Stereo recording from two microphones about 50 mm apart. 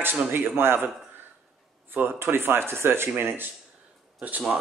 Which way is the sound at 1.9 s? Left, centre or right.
Right.